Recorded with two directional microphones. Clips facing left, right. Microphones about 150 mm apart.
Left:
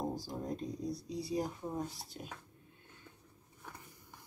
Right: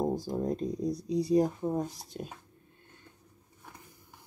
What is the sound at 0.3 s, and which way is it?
Speech, 50° right (ahead or behind).